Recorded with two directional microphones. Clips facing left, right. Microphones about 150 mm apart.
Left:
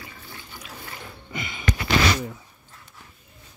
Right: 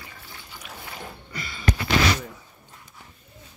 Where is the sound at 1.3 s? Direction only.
20° left (ahead or behind).